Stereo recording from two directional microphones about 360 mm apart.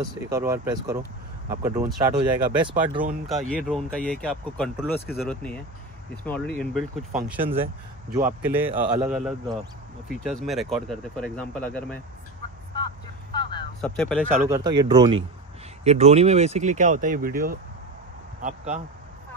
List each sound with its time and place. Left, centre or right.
0.3 s speech: centre
2.1 s speech: centre
3.3 s speech: centre
12.7 s vehicle: centre
13.7 s speech: centre
14.5 s speech: centre